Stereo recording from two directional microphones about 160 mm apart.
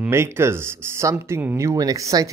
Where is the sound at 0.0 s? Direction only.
15° right (ahead or behind).